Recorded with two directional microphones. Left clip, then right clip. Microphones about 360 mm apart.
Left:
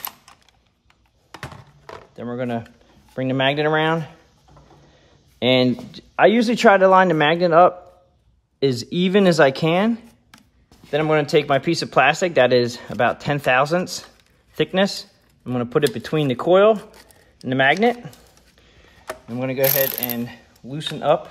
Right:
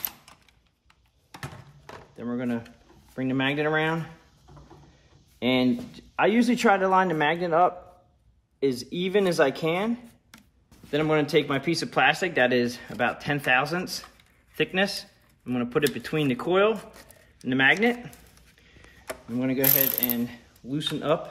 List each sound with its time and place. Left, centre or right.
1.3 s typing: centre
3.2 s speech: left
5.4 s speech: left
19.0 s mechanisms: left